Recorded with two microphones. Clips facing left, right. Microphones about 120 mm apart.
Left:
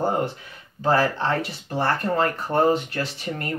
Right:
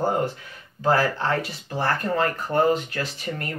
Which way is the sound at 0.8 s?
25° left (ahead or behind).